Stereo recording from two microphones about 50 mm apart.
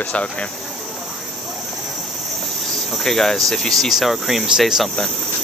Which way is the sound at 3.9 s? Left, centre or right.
Centre.